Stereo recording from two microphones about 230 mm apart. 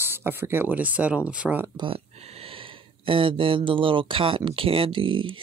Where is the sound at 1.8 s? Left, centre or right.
Right.